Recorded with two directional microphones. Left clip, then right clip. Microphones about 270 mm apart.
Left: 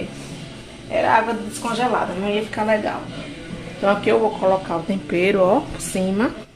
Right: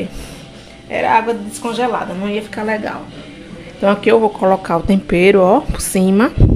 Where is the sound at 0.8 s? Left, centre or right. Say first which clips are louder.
Right 3 dB; right.